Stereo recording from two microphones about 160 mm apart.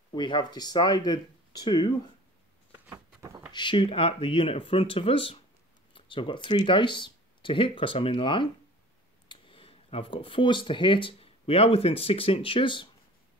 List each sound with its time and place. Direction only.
0.1 s speech: 30° left (ahead or behind)
2.9 s a sound: 20° right (ahead or behind)
3.5 s speech: 30° left (ahead or behind)